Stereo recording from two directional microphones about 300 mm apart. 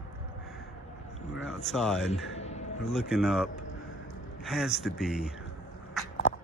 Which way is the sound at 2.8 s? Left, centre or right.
Centre.